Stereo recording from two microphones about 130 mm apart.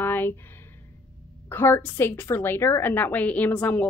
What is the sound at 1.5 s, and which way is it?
A woman's voice, 15° left (ahead or behind).